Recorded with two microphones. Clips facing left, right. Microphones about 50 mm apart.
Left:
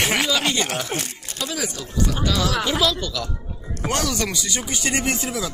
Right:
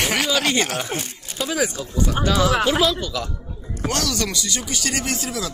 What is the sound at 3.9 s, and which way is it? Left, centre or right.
Speech, centre.